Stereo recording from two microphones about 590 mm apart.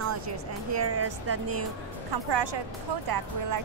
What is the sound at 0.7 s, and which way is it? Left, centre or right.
Speech, right.